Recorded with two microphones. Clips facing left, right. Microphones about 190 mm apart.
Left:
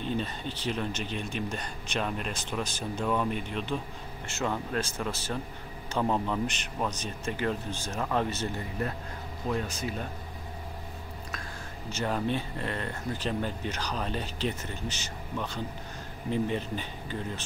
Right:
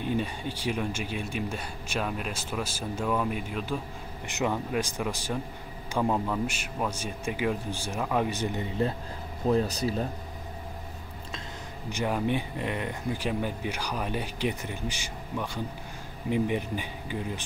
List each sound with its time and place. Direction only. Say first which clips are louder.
0.0 s speech: right 2 dB; 10° right (ahead or behind); by 10.0 s 35° right (ahead or behind)
11.9 s speech: right 2 dB; 15° right (ahead or behind)